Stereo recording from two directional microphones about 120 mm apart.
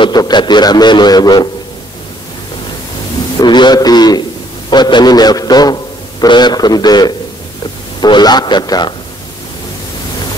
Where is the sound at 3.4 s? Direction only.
40° left (ahead or behind).